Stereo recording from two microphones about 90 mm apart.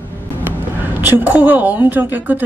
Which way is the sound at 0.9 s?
20° right (ahead or behind).